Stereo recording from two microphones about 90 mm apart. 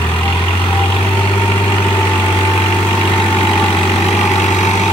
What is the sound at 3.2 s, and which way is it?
Vehicle, 5° left (ahead or behind).